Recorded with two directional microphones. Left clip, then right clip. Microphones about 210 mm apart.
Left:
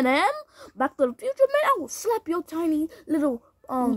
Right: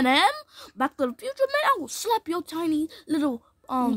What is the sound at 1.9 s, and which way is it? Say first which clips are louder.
Speech: even; 85° right.